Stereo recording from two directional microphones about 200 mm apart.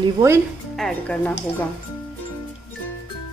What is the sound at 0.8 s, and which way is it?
Speech, 5° left (ahead or behind).